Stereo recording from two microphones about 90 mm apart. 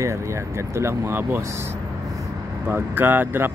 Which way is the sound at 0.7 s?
30° right (ahead or behind).